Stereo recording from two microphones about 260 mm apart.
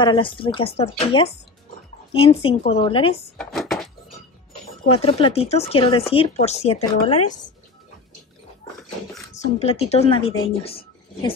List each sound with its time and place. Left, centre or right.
0.0 s a woman's voice: centre
3.3 s a sound: centre
4.9 s a woman's voice: left
9.4 s a woman's voice: left